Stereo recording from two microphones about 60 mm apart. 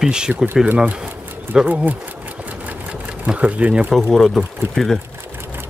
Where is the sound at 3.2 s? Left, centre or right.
Right.